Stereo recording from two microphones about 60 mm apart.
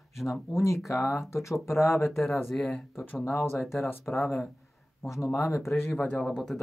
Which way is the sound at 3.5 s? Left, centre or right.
Centre.